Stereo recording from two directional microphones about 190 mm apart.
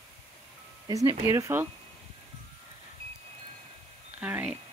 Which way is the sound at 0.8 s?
15° right (ahead or behind).